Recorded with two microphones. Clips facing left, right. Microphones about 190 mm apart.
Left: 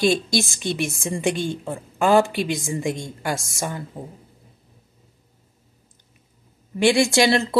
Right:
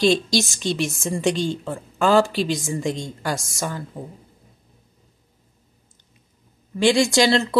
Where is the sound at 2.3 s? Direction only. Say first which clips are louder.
Right 1 dB; 55° left (ahead or behind).